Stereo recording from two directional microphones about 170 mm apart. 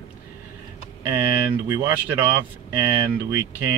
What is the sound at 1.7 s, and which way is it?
Speech, 10° right (ahead or behind).